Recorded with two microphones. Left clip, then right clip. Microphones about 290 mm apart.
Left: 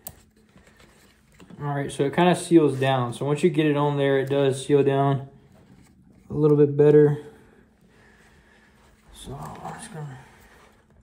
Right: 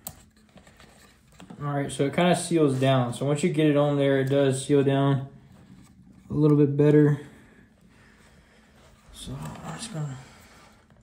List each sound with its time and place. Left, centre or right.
1.6 s speech: centre
6.2 s speech: centre